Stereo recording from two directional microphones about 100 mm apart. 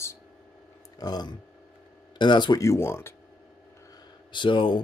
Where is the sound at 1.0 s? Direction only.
45° left (ahead or behind).